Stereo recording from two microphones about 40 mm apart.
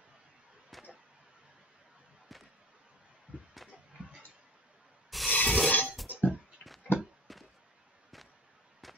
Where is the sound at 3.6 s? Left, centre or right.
Centre.